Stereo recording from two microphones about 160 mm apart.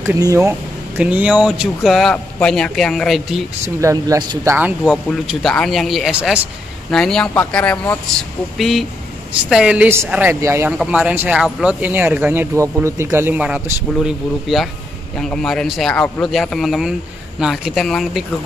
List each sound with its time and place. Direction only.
0.0 s speech: 20° right (ahead or behind); by 3.4 s centre (ahead or behind)
3.6 s speech: 20° right (ahead or behind)
4.6 s speech: 10° right (ahead or behind)